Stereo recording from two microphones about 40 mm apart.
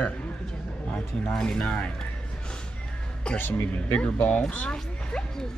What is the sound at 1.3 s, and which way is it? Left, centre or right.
Speech, left.